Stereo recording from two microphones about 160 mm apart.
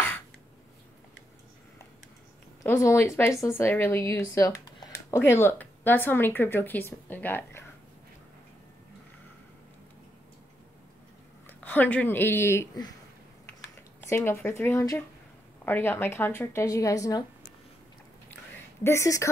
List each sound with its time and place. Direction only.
2.6 s speech: 20° left (ahead or behind)
11.4 s speech: 10° left (ahead or behind)
14.0 s speech: 15° left (ahead or behind)
18.9 s speech: 20° left (ahead or behind)